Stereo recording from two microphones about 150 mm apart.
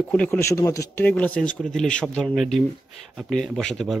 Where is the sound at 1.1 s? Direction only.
10° left (ahead or behind).